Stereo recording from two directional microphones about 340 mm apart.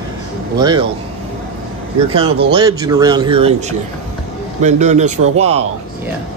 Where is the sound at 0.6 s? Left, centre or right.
Centre.